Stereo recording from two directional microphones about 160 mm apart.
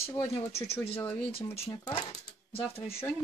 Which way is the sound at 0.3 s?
40° left (ahead or behind).